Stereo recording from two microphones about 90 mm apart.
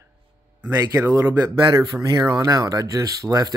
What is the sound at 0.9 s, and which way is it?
Speech, 25° right (ahead or behind).